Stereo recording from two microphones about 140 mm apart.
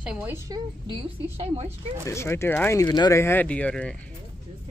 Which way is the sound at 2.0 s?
20° left (ahead or behind).